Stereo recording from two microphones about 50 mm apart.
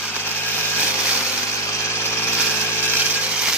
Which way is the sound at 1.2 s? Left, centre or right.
Left.